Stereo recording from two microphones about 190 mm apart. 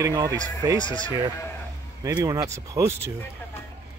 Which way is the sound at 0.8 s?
25° left (ahead or behind).